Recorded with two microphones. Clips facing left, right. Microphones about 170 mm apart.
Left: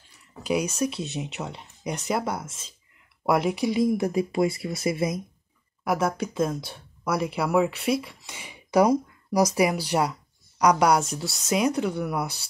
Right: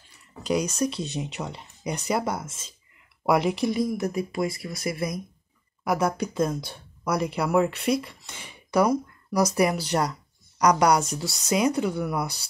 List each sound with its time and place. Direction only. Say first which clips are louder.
0.4 s speech: even; 5° left (ahead or behind)
3.8 s speech: left 3 dB; 30° left (ahead or behind)
5.9 s speech: even; centre (ahead or behind)